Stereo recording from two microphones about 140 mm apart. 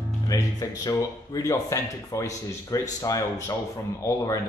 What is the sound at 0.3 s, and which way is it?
Speech, 25° left (ahead or behind).